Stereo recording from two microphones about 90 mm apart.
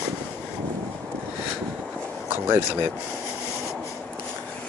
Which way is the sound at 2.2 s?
25° right (ahead or behind).